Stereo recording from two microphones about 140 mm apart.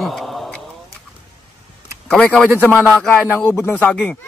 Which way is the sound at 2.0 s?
5° left (ahead or behind).